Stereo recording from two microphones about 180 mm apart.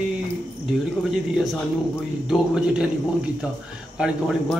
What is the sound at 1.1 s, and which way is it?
Speech, centre (ahead or behind).